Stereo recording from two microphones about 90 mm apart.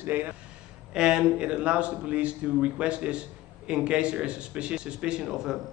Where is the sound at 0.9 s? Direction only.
10° right (ahead or behind).